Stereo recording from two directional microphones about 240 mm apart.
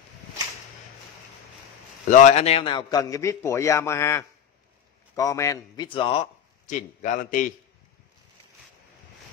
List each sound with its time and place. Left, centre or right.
2.0 s a man's voice: left